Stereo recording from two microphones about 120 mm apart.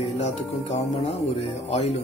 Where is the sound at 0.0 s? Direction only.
65° left (ahead or behind).